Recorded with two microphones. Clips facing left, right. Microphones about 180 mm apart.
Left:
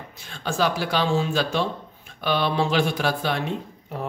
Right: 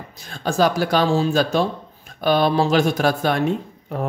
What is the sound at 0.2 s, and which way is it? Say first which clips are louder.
Speech: right 5 dB; 40° right (ahead or behind).